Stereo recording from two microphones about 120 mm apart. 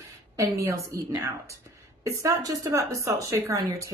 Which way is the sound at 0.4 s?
25° right (ahead or behind).